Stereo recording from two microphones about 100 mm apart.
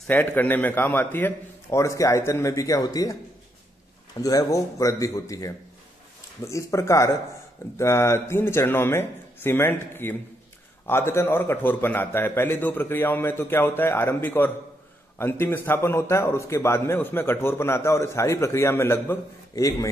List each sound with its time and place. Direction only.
0.1 s a man's voice: 20° left (ahead or behind); by 3.2 s 40° left (ahead or behind)
4.2 s a man's voice: 35° left (ahead or behind)
19.5 s speech: 35° left (ahead or behind)